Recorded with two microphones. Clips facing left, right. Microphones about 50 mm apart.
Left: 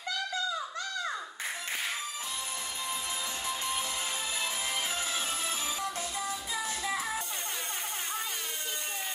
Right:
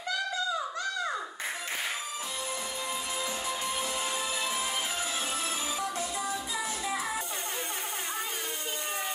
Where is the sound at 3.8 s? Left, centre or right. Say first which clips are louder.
Right 3 dB; right.